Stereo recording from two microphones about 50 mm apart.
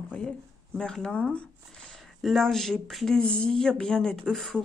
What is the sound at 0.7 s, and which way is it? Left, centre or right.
Speech, centre.